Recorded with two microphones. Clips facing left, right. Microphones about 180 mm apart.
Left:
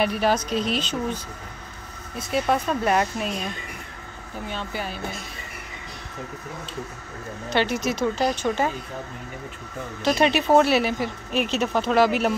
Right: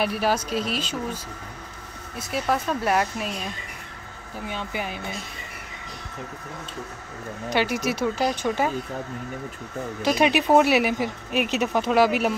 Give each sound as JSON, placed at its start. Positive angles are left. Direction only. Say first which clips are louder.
{"t": 0.0, "sound": "speech", "louder": "left 2 dB", "side_deg": -5}
{"t": 4.5, "sound": "speech", "louder": "right 1 dB", "side_deg": -15}
{"t": 7.4, "sound": "speech", "louder": "even", "side_deg": -10}
{"t": 10.0, "sound": "speech", "louder": "even", "side_deg": -10}